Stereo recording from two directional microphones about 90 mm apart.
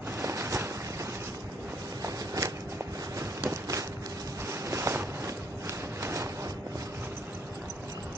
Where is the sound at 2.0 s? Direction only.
40° right (ahead or behind).